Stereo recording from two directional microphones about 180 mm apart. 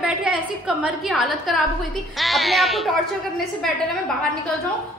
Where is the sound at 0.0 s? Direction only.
5° right (ahead or behind).